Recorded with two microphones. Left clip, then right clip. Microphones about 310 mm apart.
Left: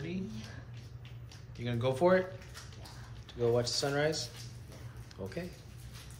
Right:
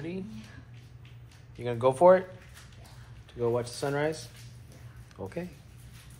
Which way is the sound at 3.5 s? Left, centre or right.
Right.